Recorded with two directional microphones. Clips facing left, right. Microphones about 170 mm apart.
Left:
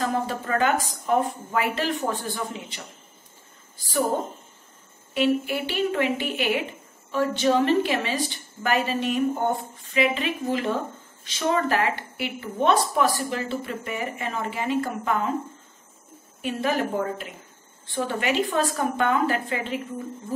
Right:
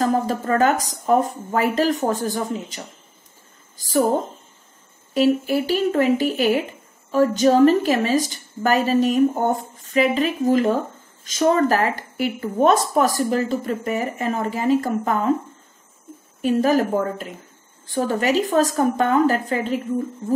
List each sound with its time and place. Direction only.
0.0 s a woman's voice: 40° right (ahead or behind)
5.1 s a woman's voice: 40° right (ahead or behind)
16.3 s a woman's voice: 40° right (ahead or behind)